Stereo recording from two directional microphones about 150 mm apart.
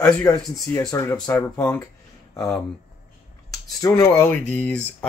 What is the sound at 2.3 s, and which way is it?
Speech, 20° left (ahead or behind).